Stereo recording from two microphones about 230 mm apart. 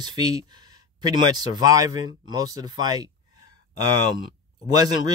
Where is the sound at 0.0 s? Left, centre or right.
Centre.